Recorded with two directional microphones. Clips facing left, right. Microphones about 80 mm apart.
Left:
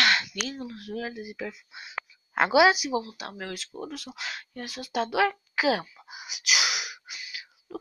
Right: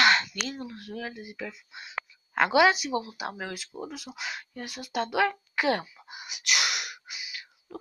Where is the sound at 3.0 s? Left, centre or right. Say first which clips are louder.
Right 2 dB; centre.